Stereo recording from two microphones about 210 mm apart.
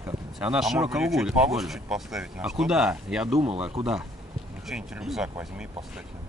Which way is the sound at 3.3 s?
30° right (ahead or behind).